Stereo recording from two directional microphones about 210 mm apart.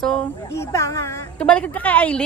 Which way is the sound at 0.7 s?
15° left (ahead or behind).